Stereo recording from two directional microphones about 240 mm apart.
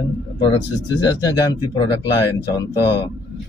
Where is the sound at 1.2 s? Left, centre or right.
Centre.